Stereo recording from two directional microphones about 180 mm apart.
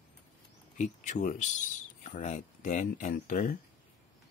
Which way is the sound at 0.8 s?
45° left (ahead or behind).